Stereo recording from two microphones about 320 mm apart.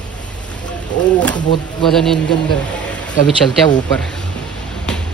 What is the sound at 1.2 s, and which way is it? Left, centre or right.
Speech, centre.